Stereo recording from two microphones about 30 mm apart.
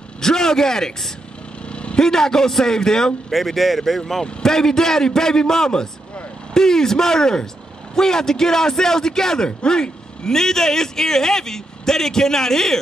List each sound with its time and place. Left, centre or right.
0.2 s a man's voice: centre
1.7 s vehicle: left
2.0 s a man's voice: centre
3.3 s speech: centre
4.2 s a man's voice: centre